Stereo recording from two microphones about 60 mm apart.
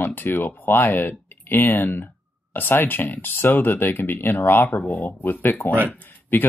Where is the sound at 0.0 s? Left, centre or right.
Left.